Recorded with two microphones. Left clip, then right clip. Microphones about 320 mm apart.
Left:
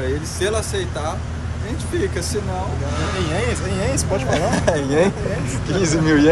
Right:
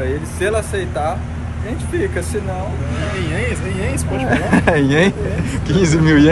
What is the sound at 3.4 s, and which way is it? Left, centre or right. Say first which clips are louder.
Speech: even; centre.